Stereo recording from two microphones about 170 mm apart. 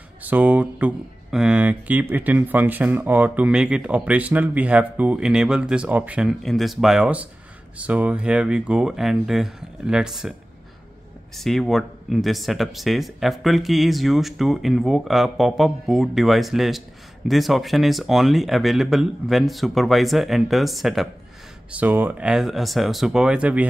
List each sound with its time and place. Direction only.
0.2 s speech: 10° right (ahead or behind)
11.3 s speech: centre (ahead or behind)